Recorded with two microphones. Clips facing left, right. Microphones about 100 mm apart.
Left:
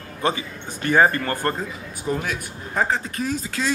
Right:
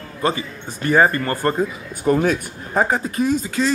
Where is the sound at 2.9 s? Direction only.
20° right (ahead or behind).